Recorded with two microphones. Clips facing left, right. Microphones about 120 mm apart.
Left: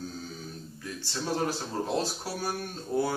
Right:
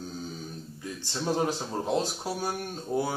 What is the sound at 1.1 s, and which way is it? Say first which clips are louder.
Speech: right 2 dB; 20° right (ahead or behind).